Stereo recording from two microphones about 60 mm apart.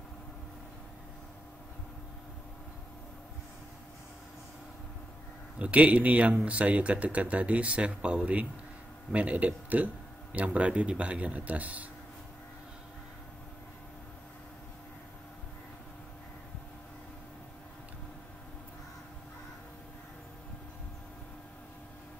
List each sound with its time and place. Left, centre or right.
5.6 s speech: right